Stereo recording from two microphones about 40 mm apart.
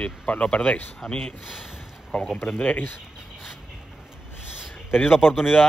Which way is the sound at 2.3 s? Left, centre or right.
Left.